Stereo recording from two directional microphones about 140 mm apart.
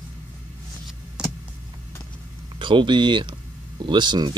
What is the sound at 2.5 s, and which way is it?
Speech, 35° right (ahead or behind).